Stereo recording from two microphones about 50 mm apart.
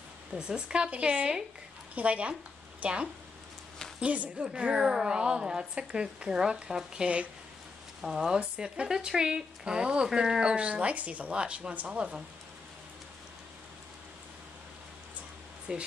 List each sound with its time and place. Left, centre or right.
0.3 s a woman's voice: centre
8.4 s a woman's voice: centre
15.7 s a woman's voice: centre